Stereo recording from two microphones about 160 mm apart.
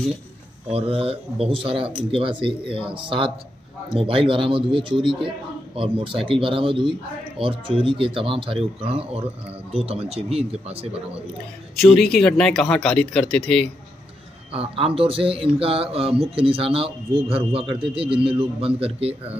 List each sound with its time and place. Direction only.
0.7 s speech: 35° right (ahead or behind)
12.0 s speech: 5° left (ahead or behind)
14.5 s speech: 35° right (ahead or behind)